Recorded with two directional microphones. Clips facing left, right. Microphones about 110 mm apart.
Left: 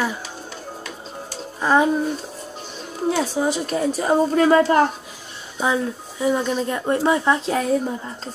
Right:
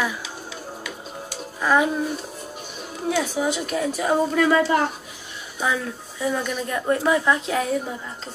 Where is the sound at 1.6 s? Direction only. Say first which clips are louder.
Left 2 dB; 30° left (ahead or behind).